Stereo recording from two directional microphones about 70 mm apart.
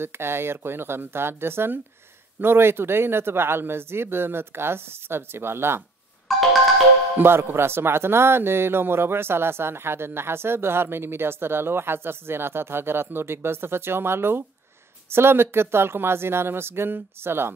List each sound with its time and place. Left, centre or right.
0.0 s speech: right
6.3 s music: centre
7.2 s speech: right